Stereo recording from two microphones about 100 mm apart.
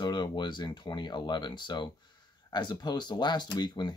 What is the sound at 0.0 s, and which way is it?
Speech, 50° left (ahead or behind).